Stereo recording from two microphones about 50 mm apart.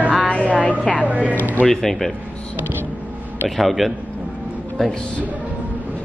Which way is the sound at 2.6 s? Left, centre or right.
Right.